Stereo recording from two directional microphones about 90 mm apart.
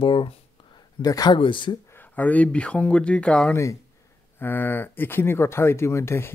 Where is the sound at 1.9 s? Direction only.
20° left (ahead or behind).